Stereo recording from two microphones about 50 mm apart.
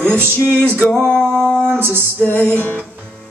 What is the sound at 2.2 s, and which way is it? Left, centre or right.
Music, left.